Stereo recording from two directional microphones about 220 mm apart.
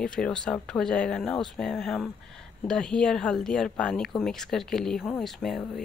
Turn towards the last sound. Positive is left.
turn(degrees=0)  # may be behind; listen again after turning